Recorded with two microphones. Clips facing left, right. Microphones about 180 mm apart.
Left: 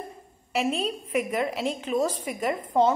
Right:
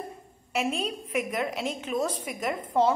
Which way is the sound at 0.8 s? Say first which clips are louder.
Left 3 dB; centre (ahead or behind).